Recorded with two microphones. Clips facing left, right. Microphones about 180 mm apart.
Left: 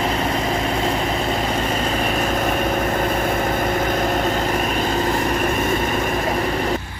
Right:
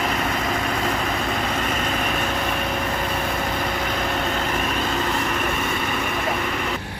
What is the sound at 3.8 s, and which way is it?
Vehicle, 45° left (ahead or behind).